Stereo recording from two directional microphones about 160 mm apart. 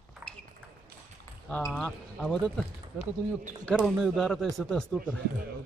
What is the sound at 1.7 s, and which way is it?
Speech, centre (ahead or behind).